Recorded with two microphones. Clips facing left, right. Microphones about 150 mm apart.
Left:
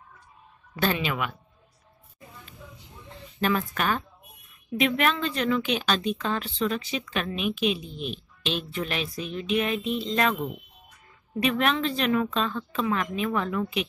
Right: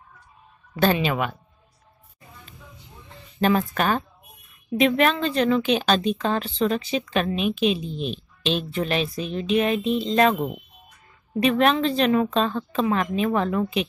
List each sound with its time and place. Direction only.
1.0 s speech: 35° right (ahead or behind)
3.3 s a woman's voice: 30° right (ahead or behind)